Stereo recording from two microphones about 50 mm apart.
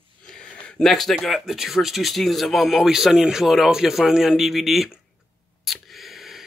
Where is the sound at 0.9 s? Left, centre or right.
Centre.